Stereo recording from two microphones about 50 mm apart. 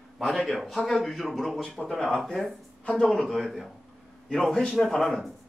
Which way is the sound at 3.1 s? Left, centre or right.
Centre.